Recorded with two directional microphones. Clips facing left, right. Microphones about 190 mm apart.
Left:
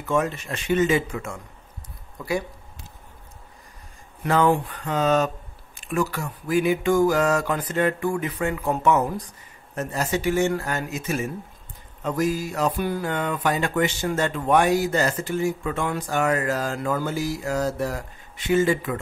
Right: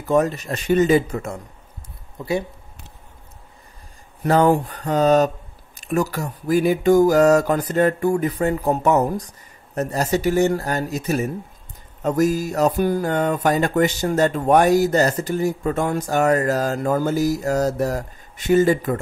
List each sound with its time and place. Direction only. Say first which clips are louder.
0.0 s speech: right 5 dB; 40° right (ahead or behind)
2.1 s speech: right 3 dB; 25° right (ahead or behind)
4.2 s speech: right 4 dB; 40° right (ahead or behind)